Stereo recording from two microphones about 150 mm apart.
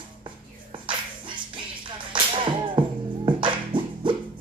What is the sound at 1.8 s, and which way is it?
Whip, 35° right (ahead or behind).